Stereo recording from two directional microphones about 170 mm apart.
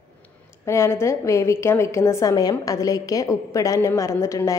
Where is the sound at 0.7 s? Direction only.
15° left (ahead or behind).